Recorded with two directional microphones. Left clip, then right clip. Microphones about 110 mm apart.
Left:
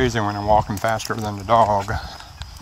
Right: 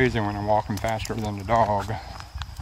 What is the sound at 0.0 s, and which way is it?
Speech, 45° right (ahead or behind).